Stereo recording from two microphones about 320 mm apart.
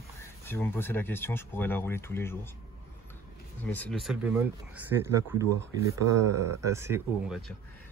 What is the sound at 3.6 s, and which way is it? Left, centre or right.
Speech, centre.